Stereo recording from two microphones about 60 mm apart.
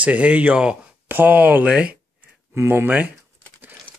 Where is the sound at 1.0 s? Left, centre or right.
Right.